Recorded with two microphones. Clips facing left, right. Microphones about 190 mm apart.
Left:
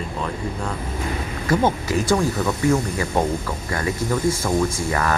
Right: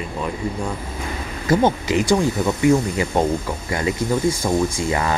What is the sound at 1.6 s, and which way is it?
Speech, 15° right (ahead or behind).